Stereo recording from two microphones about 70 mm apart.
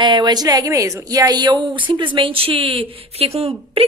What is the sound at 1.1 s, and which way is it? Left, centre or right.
Speech, right.